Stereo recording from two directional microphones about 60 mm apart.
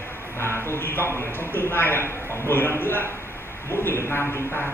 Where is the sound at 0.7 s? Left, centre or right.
Left.